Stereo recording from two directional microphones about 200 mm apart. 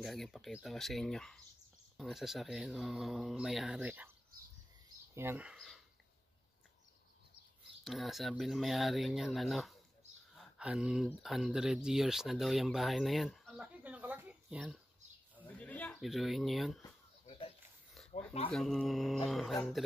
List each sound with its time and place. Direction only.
0.0 s speech: centre (ahead or behind)
5.1 s speech: 10° right (ahead or behind)
7.8 s speech: centre (ahead or behind)
15.4 s speech: 5° left (ahead or behind)
17.3 s a sound: 30° left (ahead or behind)
18.5 s speech: centre (ahead or behind)